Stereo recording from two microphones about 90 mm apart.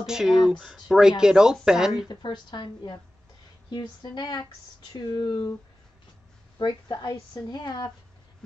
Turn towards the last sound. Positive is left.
turn(degrees=55)  # may be behind; listen again after turning